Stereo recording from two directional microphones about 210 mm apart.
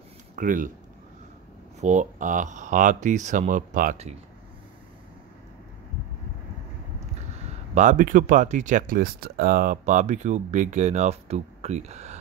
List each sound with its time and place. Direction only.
0.4 s speech: 40° right (ahead or behind)
1.8 s speech: 35° right (ahead or behind)
7.7 s speech: 35° right (ahead or behind)